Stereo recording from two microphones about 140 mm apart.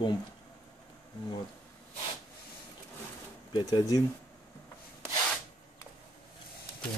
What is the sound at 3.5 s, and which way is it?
Speech, 30° left (ahead or behind).